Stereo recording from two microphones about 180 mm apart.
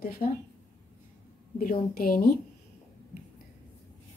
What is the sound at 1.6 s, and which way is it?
Speech, 50° left (ahead or behind).